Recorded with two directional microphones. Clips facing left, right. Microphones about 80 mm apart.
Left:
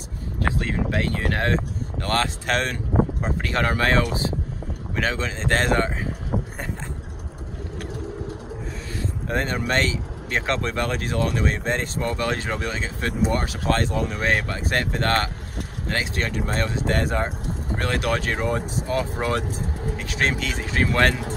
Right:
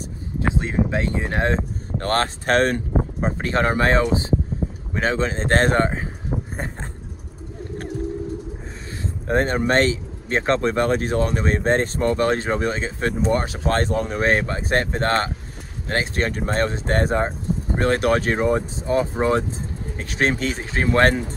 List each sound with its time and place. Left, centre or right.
0.4 s speech: right
2.0 s speech: right
6.3 s a sound: centre
9.0 s speech: right
20.0 s speech: right